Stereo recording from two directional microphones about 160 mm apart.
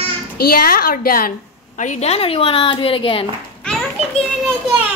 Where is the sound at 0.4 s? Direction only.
70° left (ahead or behind).